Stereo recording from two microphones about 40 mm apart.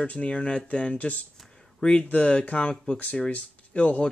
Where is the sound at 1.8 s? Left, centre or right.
Left.